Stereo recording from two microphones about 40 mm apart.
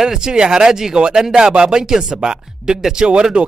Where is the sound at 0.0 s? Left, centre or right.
Centre.